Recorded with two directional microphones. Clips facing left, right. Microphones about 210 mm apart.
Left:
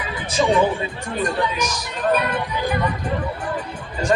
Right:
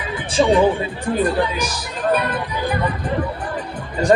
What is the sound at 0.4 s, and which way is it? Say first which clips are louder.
Speech: right 3 dB; 30° right (ahead or behind).